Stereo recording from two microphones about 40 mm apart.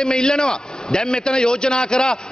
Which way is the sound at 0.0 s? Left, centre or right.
Left.